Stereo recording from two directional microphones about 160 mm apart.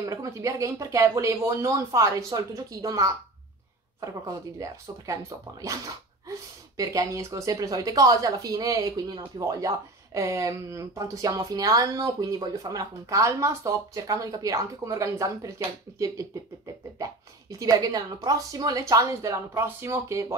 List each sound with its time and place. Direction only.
0.0 s a woman's voice: 20° right (ahead or behind)
6.8 s a woman's voice: 20° right (ahead or behind)
17.0 s a woman's voice: 20° right (ahead or behind)